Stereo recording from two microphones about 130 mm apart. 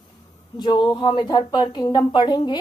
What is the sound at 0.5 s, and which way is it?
A woman's voice, 35° left (ahead or behind).